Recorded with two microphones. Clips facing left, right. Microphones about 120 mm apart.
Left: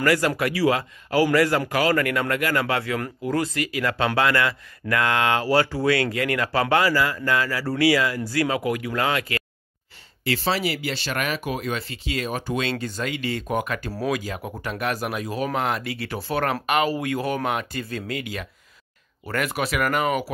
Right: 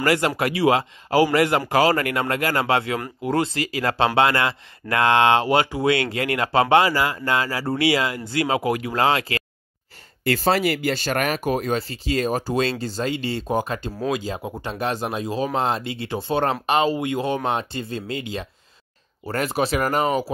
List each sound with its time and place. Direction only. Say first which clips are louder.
0.0 s speech: even; 25° right (ahead or behind)
10.2 s speech: right 4 dB; 45° right (ahead or behind); by 20.2 s 30° right (ahead or behind)